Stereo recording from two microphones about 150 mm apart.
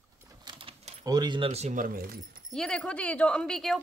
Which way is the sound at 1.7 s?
70° right (ahead or behind).